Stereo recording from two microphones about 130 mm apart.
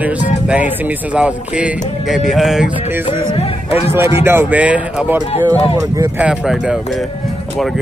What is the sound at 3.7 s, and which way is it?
Speech, 50° left (ahead or behind).